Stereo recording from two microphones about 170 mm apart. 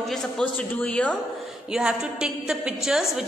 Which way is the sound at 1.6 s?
5° right (ahead or behind).